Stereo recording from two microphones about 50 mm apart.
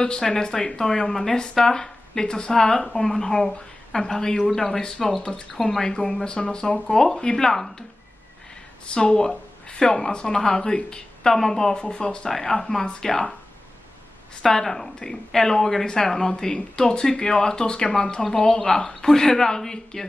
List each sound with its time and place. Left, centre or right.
0.2 s speech: centre
8.8 s speech: centre
14.4 s speech: centre